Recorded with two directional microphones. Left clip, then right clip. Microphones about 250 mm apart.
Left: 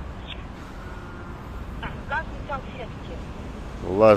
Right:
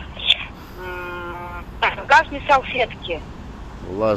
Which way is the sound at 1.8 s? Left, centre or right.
Right.